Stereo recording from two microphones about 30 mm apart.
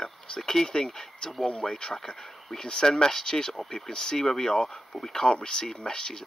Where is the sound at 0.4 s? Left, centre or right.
Centre.